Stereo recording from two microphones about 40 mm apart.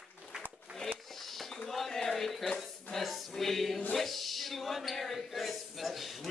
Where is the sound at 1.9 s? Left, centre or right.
Centre.